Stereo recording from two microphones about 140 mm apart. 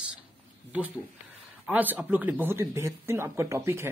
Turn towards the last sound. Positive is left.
turn(degrees=-20)  # may be behind; listen again after turning